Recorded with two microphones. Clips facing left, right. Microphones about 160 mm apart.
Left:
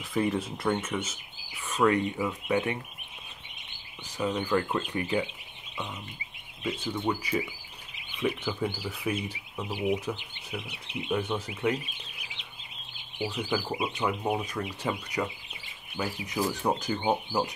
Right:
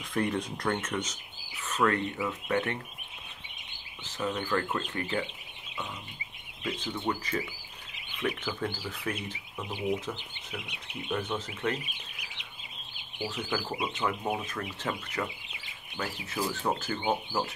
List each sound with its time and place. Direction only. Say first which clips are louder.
0.0 s speech: left 2 dB; 5° left (ahead or behind)
4.0 s speech: left 3 dB; 15° left (ahead or behind)
6.6 s speech: left 3 dB; 10° left (ahead or behind)
13.3 s speech: left 3 dB; 10° left (ahead or behind)